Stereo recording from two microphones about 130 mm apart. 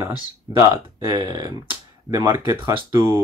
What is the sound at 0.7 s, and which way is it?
Speech, 35° right (ahead or behind).